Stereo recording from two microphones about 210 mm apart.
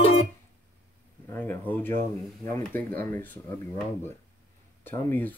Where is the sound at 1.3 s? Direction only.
10° left (ahead or behind).